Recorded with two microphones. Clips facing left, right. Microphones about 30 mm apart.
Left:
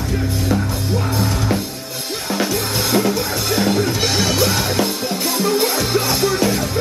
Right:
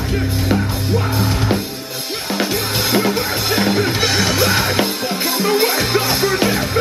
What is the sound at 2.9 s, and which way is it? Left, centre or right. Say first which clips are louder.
Music: even; right.